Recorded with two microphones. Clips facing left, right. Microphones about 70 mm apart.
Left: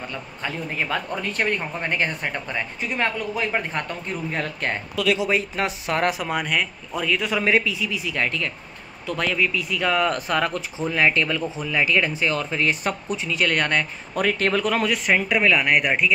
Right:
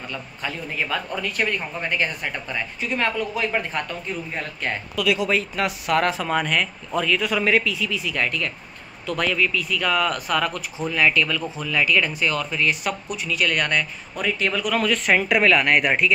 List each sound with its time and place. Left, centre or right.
0.1 s speech: left
14.1 s speech: left
15.0 s speech: centre